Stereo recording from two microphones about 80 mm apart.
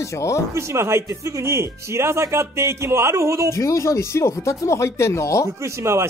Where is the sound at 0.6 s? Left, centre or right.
Right.